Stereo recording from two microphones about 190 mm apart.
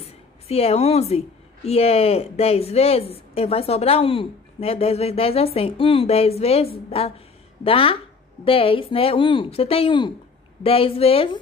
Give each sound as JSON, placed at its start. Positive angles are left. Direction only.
{"t": 0.0, "sound": "a woman's voice", "side_deg": 30}